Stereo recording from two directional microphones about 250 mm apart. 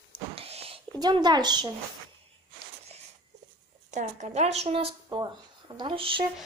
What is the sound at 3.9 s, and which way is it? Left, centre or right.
Speech, right.